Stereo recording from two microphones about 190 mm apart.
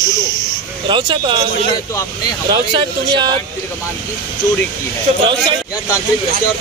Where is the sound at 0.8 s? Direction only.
25° right (ahead or behind).